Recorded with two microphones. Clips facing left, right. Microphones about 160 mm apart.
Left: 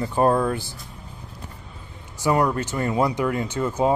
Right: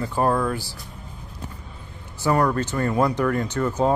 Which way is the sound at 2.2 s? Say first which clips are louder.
Even; 15° left (ahead or behind).